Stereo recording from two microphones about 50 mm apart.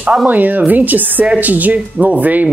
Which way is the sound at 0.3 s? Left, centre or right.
Right.